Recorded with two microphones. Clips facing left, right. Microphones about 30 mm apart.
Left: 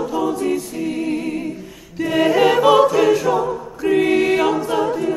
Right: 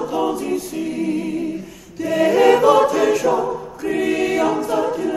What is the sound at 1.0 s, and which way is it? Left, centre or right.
A capella, left.